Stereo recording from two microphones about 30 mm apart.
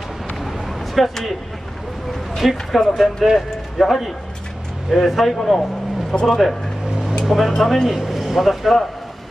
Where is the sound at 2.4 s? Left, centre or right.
Centre.